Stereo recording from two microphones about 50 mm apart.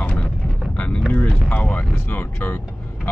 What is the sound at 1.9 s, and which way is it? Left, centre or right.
Speech, left.